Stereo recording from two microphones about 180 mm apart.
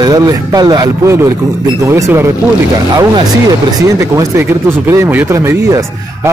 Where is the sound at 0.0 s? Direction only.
20° right (ahead or behind).